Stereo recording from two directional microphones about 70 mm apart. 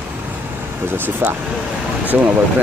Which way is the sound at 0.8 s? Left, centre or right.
Right.